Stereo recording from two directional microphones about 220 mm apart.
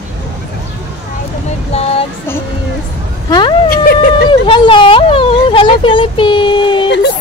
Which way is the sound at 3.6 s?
45° left (ahead or behind).